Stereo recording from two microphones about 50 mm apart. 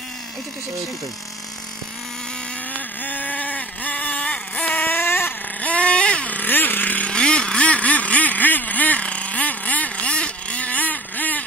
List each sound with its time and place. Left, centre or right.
2.7 s vehicle: left
5.0 s vehicle: left
5.6 s vehicle: left
7.1 s vehicle: centre